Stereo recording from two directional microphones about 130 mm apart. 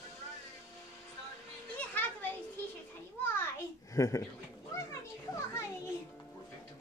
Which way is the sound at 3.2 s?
15° left (ahead or behind).